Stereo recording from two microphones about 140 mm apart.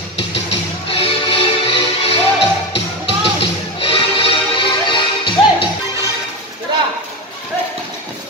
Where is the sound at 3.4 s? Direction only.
40° left (ahead or behind).